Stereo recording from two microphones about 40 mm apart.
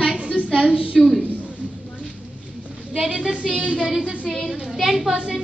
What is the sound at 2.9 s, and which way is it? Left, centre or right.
Speech, centre.